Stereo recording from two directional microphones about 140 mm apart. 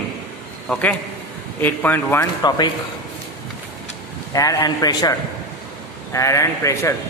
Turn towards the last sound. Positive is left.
turn(degrees=20)  # may be behind; listen again after turning